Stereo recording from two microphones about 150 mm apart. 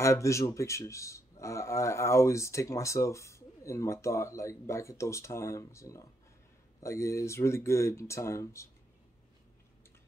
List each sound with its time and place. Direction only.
0.0 s speech: 20° left (ahead or behind)